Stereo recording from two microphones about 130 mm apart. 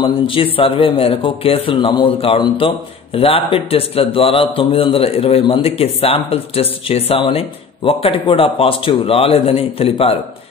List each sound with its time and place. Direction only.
0.0 s a man's voice: 45° left (ahead or behind)